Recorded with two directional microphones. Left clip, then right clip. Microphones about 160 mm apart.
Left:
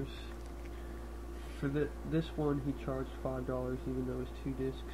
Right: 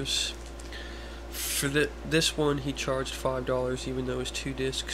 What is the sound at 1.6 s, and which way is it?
Speech, 30° right (ahead or behind).